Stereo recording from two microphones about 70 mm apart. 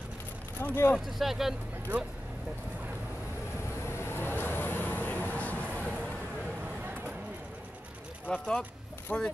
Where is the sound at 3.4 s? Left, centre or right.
Left.